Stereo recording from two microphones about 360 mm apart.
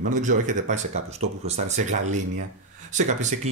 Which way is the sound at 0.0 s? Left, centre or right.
Right.